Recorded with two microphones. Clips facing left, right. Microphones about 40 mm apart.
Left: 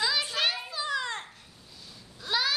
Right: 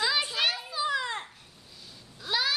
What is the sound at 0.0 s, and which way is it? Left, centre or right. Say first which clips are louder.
Children playing: right 1 dB; centre.